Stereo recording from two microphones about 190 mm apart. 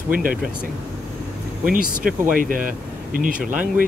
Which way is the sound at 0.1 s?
50° right (ahead or behind).